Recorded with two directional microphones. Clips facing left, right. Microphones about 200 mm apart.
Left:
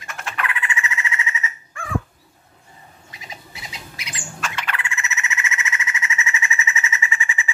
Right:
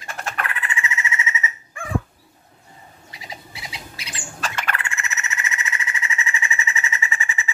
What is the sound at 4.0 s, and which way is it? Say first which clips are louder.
Squawk: left 1 dB; 30° right (ahead or behind).